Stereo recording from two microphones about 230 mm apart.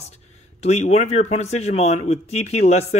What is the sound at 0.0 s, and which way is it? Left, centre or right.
Speech, left.